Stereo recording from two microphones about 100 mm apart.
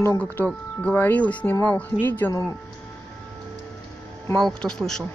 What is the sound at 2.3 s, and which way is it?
Speech, 30° left (ahead or behind).